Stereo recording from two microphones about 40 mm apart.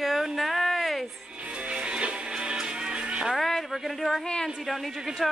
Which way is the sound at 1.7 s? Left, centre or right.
Right.